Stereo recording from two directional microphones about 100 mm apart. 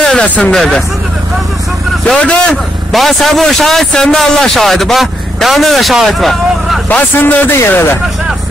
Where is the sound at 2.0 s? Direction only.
10° left (ahead or behind).